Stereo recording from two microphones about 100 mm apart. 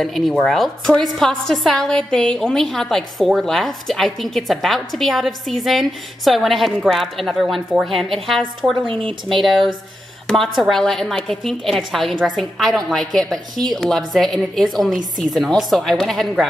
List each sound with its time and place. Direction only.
0.0 s a woman's voice: centre (ahead or behind)
8.8 s speech: 60° right (ahead or behind)
10.2 s a woman's voice: 5° left (ahead or behind)